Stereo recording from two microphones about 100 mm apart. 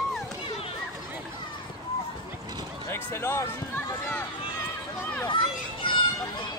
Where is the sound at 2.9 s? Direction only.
25° left (ahead or behind).